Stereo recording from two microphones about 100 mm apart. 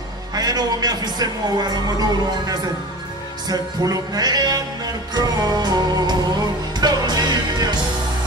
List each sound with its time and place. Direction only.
0.3 s a man's voice: 40° right (ahead or behind)
3.4 s music: 40° right (ahead or behind)